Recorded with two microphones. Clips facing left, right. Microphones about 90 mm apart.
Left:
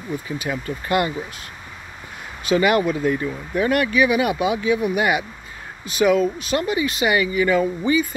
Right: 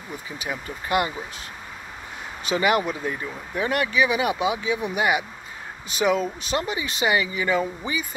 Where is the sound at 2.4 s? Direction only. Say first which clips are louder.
Left 4 dB; 20° right (ahead or behind).